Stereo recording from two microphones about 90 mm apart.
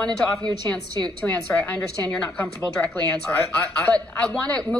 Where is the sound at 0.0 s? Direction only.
10° left (ahead or behind).